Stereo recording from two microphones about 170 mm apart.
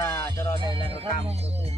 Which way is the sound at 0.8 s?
35° right (ahead or behind).